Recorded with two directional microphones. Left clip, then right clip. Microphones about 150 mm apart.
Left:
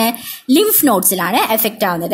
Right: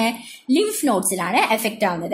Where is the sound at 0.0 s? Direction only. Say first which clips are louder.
Left 5 dB; 40° left (ahead or behind).